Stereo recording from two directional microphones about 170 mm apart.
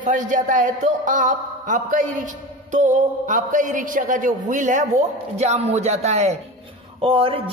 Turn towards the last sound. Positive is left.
turn(degrees=-30)  # may be behind; listen again after turning